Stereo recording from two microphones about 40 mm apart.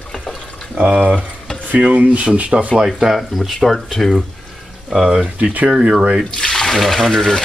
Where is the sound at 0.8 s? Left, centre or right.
Right.